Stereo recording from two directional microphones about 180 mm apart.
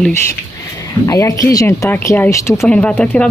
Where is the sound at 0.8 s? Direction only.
15° left (ahead or behind).